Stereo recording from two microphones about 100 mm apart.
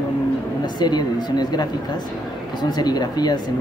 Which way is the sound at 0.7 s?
45° left (ahead or behind).